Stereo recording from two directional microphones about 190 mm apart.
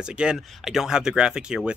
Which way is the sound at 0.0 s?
5° right (ahead or behind).